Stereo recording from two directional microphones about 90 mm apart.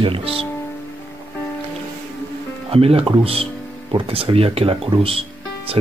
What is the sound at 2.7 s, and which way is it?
Speech, 90° right.